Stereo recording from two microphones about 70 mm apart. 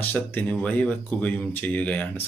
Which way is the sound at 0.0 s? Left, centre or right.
Left.